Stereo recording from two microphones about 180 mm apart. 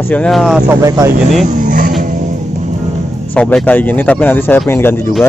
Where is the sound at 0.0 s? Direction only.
5° left (ahead or behind).